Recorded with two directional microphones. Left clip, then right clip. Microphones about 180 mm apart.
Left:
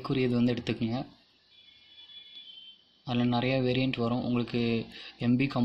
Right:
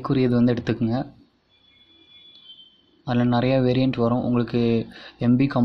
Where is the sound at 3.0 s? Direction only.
10° right (ahead or behind).